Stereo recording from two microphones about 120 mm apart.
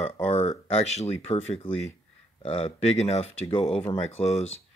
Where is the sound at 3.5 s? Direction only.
50° left (ahead or behind).